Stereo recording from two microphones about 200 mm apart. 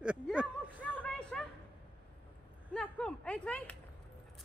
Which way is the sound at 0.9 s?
5° left (ahead or behind).